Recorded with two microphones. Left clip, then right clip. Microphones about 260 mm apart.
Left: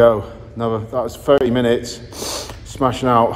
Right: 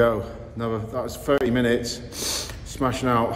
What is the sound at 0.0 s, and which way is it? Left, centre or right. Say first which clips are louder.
A man's voice: left 8 dB; centre.